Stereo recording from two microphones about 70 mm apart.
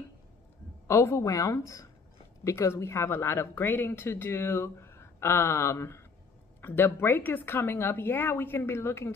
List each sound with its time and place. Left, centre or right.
0.8 s a woman's voice: left